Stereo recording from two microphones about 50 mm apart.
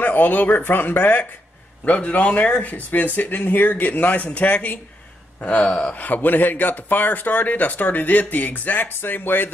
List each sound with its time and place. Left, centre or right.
0.0 s speech: left
1.9 s speech: left
6.0 s speech: left